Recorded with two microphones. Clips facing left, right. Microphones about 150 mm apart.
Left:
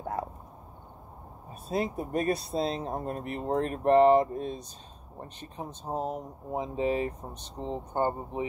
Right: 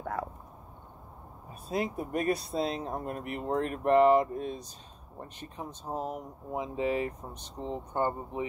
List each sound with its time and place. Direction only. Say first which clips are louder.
1.5 s speech: left 2 dB; 30° left (ahead or behind)
5.9 s speech: left 3 dB; 30° left (ahead or behind)